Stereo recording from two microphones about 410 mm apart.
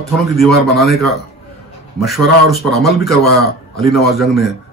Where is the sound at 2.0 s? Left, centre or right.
Centre.